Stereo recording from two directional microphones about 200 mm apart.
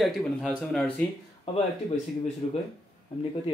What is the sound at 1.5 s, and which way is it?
Speech, 30° left (ahead or behind).